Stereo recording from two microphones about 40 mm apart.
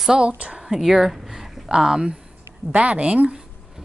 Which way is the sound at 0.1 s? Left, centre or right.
Right.